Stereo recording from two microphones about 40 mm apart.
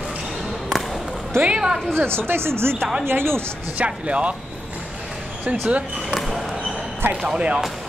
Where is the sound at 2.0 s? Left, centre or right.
Right.